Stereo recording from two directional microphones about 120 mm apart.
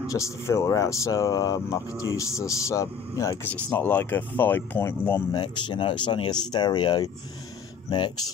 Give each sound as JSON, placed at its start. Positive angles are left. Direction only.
{"t": 0.1, "sound": "speech", "side_deg": 25}
{"t": 3.4, "sound": "speech", "side_deg": 15}
{"t": 5.3, "sound": "speech", "side_deg": 40}